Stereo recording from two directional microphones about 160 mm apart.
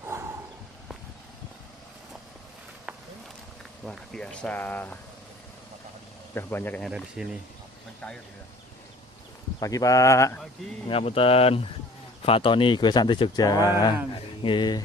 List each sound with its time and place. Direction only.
0.0 s a sound: 15° right (ahead or behind)
3.8 s speech: 5° left (ahead or behind)
6.3 s speech: 15° left (ahead or behind)
7.2 s speech: 5° right (ahead or behind)
9.6 s speech: 20° left (ahead or behind)
10.9 s speech: 35° left (ahead or behind)